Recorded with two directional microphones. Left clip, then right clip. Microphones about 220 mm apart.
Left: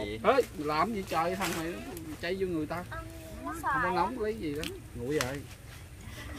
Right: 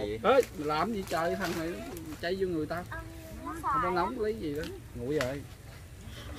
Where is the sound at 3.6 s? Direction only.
40° left (ahead or behind).